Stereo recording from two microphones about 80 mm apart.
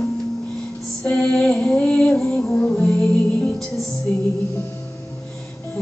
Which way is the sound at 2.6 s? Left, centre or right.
Left.